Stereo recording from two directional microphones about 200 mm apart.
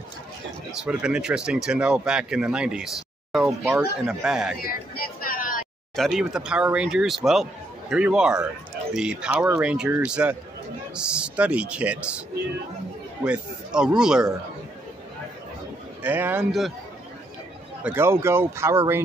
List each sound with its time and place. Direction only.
0.8 s speech: 5° right (ahead or behind)
4.6 s vehicle: 50° left (ahead or behind)
5.9 s speech: centre (ahead or behind)
13.2 s speech: 5° right (ahead or behind)
16.0 s speech: 10° right (ahead or behind)
17.8 s speech: 10° right (ahead or behind)